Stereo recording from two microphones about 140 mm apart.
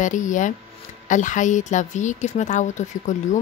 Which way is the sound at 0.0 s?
65° left (ahead or behind).